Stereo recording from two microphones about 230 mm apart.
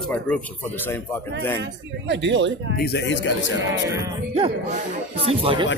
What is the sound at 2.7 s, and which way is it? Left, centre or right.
Speech, left.